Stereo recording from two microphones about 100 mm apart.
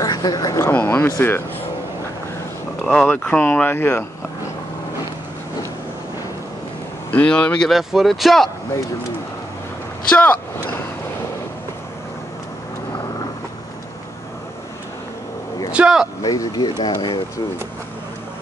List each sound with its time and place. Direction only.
0.0 s speech: 40° left (ahead or behind)
0.7 s speech: 20° left (ahead or behind)
2.8 s speech: 10° left (ahead or behind)
7.1 s speech: 15° left (ahead or behind)
7.7 s speech: centre (ahead or behind)
10.0 s vehicle: 15° left (ahead or behind)
15.7 s speech: 10° right (ahead or behind)
16.2 s speech: 35° left (ahead or behind)
16.6 s speech: 50° left (ahead or behind)